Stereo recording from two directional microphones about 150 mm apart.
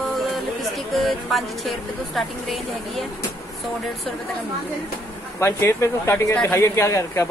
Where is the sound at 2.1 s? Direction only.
Centre (ahead or behind).